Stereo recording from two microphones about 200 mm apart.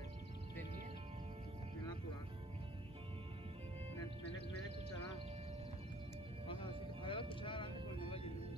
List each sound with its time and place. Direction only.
6.4 s music: 25° left (ahead or behind)